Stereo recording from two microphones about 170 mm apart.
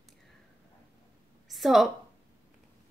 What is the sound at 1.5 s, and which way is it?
Speech, centre (ahead or behind).